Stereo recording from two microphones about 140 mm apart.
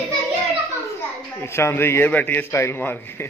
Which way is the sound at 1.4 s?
20° left (ahead or behind).